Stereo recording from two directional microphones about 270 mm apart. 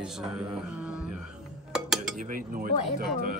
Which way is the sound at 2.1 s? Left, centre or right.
Right.